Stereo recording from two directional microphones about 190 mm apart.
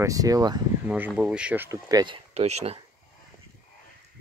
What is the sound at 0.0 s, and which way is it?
Speech, 20° right (ahead or behind).